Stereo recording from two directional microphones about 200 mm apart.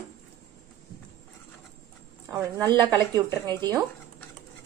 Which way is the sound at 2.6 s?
20° right (ahead or behind).